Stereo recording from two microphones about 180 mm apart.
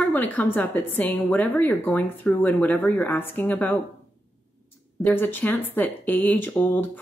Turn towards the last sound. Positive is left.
turn(degrees=10)  # may be behind; listen again after turning